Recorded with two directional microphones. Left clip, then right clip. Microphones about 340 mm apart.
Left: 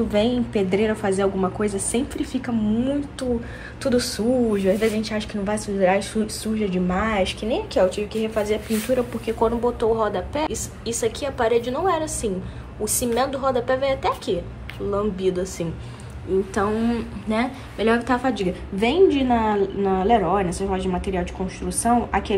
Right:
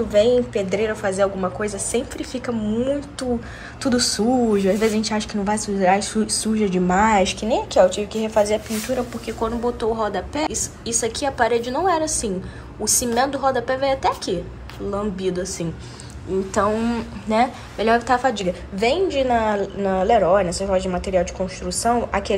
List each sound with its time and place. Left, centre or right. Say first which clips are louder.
0.1 s a woman's voice: right 9 dB; centre